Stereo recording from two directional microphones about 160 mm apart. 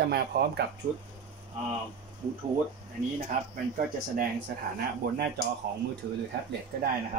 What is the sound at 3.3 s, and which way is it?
Speech, 60° right (ahead or behind).